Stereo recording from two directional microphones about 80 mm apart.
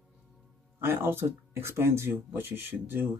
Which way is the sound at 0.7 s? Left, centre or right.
Right.